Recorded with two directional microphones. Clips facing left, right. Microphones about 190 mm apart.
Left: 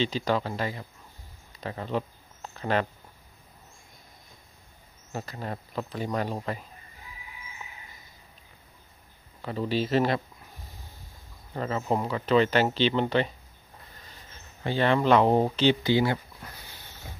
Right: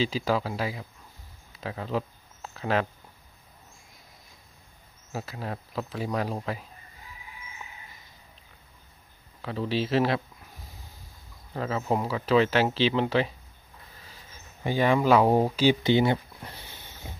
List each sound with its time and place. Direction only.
0.0 s speech: 5° right (ahead or behind)
5.1 s speech: 5° right (ahead or behind)
9.4 s speech: centre (ahead or behind)
11.5 s speech: centre (ahead or behind)
15.8 s a sound: 20° right (ahead or behind)